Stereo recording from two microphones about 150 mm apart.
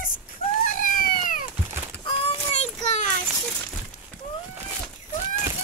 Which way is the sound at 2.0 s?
40° left (ahead or behind).